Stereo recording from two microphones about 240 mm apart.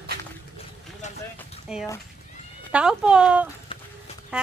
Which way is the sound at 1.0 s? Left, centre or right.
Left.